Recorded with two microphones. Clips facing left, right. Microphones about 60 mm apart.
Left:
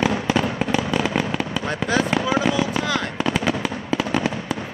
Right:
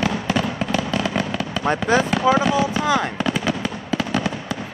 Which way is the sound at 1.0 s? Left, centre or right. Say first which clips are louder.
Left 1 dB; left.